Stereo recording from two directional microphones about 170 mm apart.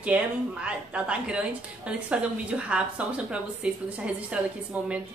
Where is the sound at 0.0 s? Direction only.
5° right (ahead or behind).